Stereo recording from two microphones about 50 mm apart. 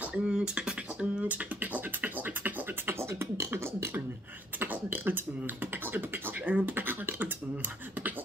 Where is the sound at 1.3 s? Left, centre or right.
Right.